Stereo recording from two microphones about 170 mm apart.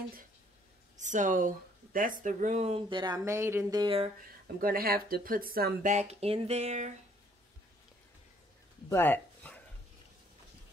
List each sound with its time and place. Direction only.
0.9 s speech: 45° right (ahead or behind); by 3.8 s 15° right (ahead or behind)
3.8 s speech: 35° right (ahead or behind)
4.6 s speech: 60° right (ahead or behind)
5.9 s speech: 40° right (ahead or behind)
8.8 s a sound: 15° left (ahead or behind)